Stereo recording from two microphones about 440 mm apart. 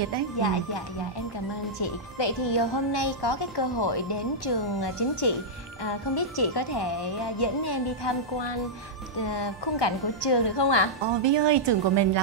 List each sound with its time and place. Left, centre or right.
2.1 s a woman's voice: left
11.2 s a woman's voice: right